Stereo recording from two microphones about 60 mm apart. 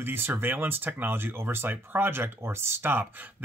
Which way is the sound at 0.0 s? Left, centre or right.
Right.